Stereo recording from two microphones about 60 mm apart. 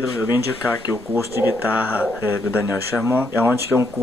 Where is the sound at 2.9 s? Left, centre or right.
Centre.